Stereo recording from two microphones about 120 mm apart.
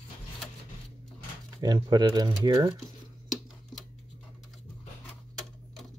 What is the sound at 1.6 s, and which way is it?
Speech, 35° right (ahead or behind).